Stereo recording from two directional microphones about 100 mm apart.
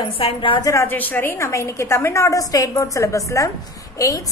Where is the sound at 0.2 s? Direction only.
55° left (ahead or behind).